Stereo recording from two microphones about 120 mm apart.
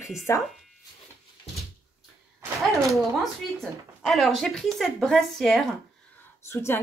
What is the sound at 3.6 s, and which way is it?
Speech, centre (ahead or behind).